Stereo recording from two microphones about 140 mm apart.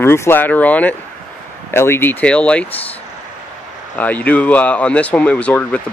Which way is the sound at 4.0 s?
10° left (ahead or behind).